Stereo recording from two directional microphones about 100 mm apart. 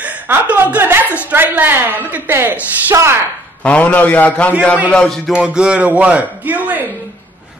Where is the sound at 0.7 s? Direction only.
20° right (ahead or behind).